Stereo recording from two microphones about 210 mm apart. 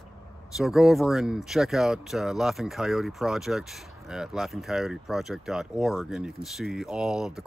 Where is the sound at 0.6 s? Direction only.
Centre (ahead or behind).